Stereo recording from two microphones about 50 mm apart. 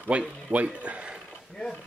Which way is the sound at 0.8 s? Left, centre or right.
Right.